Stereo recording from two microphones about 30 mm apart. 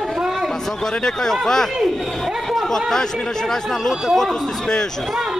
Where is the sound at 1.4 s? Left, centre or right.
Centre.